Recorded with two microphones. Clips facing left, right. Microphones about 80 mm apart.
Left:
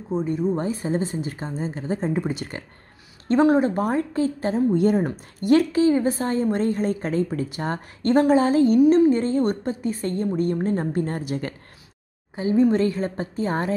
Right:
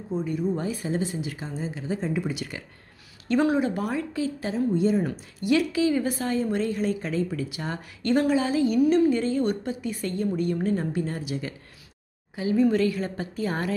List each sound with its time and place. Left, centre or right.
0.1 s a woman's voice: left
4.7 s a woman's voice: left
8.8 s a woman's voice: left
12.4 s a woman's voice: left